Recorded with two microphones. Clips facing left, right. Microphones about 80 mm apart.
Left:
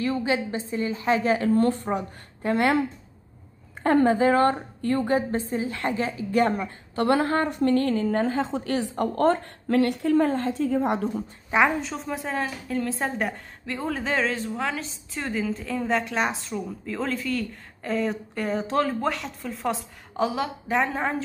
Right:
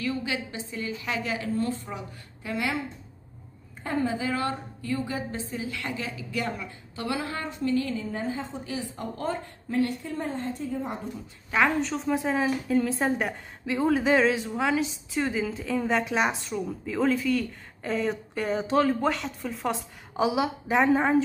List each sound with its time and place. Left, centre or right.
0.0 s a woman's voice: left
3.8 s a woman's voice: left
11.8 s a woman's voice: centre